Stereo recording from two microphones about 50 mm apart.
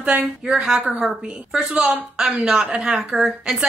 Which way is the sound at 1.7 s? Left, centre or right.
Right.